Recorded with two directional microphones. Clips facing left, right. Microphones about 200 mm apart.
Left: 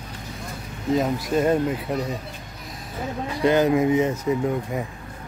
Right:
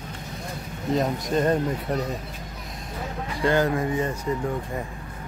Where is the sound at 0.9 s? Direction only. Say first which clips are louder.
Left 2 dB; 5° left (ahead or behind).